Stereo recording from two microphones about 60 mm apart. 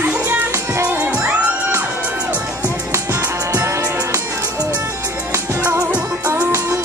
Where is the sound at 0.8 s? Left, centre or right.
Right.